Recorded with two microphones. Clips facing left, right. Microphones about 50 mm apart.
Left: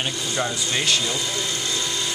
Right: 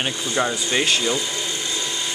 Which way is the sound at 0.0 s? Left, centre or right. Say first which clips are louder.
Right 3 dB; right.